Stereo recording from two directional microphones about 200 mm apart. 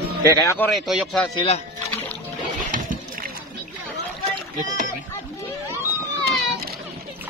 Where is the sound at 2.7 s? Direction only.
45° right (ahead or behind).